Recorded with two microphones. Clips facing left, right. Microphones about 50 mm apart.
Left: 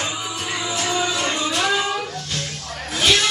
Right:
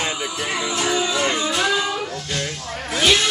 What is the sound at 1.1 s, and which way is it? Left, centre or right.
Music, centre.